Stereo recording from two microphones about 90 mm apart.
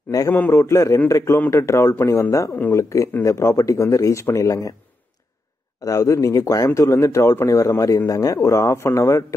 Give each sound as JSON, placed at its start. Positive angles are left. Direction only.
{"t": 0.1, "sound": "a man's voice", "side_deg": 40}
{"t": 5.8, "sound": "speech", "side_deg": 40}